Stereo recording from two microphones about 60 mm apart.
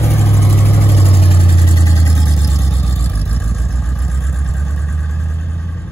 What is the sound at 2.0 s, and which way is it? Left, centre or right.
Vehicle, left.